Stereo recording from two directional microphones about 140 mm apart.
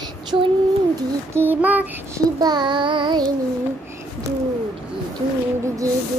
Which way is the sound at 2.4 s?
30° right (ahead or behind).